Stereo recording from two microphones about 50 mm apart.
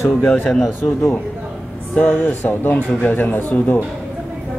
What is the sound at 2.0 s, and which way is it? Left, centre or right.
Speech, left.